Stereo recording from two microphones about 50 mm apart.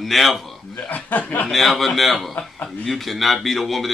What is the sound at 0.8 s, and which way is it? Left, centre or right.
Speech, left.